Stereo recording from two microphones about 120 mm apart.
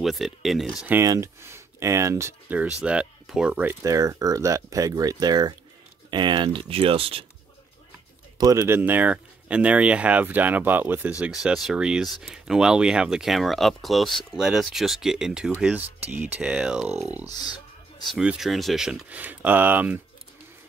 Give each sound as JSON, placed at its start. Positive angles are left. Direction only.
{"t": 0.0, "sound": "speech", "side_deg": 0}
{"t": 1.0, "sound": "speech", "side_deg": -25}
{"t": 2.8, "sound": "speech", "side_deg": -10}
{"t": 3.6, "sound": "speech", "side_deg": -25}
{"t": 8.4, "sound": "speech", "side_deg": -30}
{"t": 8.6, "sound": "speech", "side_deg": -15}